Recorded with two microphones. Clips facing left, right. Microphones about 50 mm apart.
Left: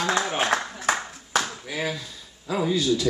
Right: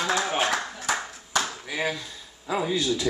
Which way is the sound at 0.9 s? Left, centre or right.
Left.